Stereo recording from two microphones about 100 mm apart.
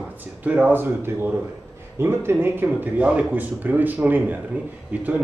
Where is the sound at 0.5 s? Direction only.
20° right (ahead or behind).